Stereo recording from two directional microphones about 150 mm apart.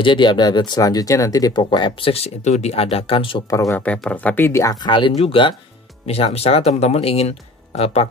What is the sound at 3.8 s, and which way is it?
Speech, 10° left (ahead or behind).